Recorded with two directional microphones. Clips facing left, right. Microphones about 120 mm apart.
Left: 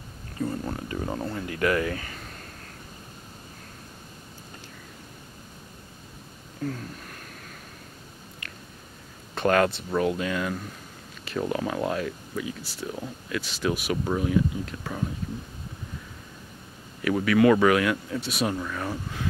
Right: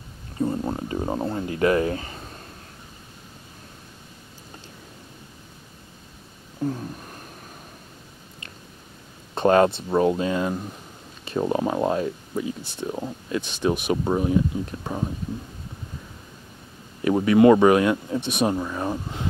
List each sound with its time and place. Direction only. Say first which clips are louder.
0.4 s speech: right 5 dB; 25° right (ahead or behind)
6.6 s a sound: right 5 dB; 20° right (ahead or behind)
9.3 s speech: right 5 dB; 25° right (ahead or behind)
17.0 s speech: right 4 dB; 25° right (ahead or behind)